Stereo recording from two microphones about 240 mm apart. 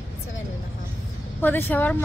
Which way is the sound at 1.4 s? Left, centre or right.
Centre.